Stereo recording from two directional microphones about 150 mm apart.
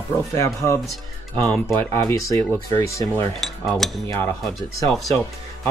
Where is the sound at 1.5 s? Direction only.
5° left (ahead or behind).